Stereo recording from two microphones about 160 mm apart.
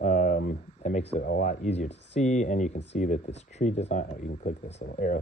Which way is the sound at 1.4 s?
45° left (ahead or behind).